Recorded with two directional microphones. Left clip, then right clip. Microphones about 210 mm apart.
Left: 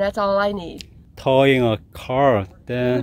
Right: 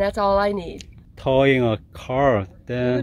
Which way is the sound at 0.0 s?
20° right (ahead or behind).